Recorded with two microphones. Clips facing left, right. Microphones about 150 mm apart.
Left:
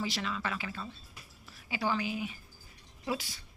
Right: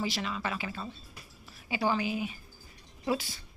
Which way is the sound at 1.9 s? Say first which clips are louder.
Right 3 dB; 20° right (ahead or behind).